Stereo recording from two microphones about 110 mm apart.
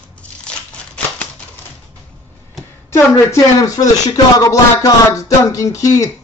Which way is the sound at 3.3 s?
30° left (ahead or behind).